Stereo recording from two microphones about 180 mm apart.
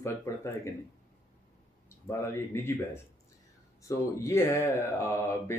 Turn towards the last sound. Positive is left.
turn(degrees=15)  # may be behind; listen again after turning